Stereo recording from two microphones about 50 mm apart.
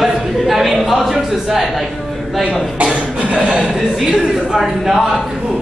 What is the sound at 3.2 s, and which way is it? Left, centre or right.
A woman's voice, centre.